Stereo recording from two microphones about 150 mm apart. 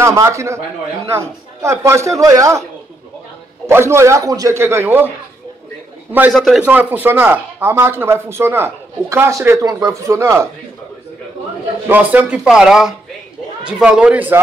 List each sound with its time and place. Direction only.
0.0 s a man's voice: 20° right (ahead or behind)
3.6 s speech: 15° right (ahead or behind)
6.3 s speech: centre (ahead or behind); by 10.5 s 20° right (ahead or behind)
11.9 s speech: 10° right (ahead or behind)